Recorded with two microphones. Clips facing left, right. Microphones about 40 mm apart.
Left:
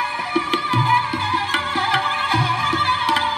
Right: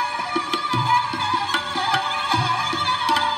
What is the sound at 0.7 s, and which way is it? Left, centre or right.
Music, centre.